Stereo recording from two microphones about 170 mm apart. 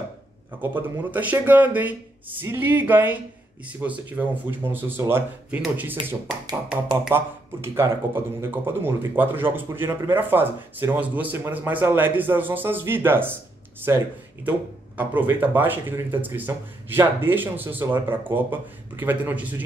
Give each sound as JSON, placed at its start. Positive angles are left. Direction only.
{"t": 0.6, "sound": "speech", "side_deg": -10}
{"t": 6.0, "sound": "speech", "side_deg": -30}
{"t": 7.1, "sound": "speech", "side_deg": -15}